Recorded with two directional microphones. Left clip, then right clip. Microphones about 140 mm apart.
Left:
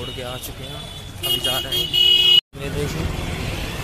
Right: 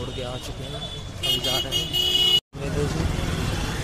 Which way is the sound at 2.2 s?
90° right.